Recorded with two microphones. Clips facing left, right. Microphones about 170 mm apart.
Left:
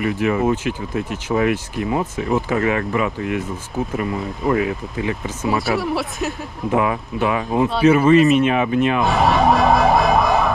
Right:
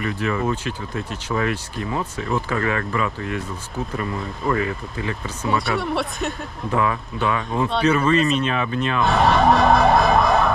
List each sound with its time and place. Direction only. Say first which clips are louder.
0.0 s speech: left 5 dB; 20° left (ahead or behind)
5.6 s speech: left 2 dB; centre (ahead or behind)
6.7 s speech: left 3 dB; 20° left (ahead or behind)
9.0 s speech: left 1 dB; centre (ahead or behind)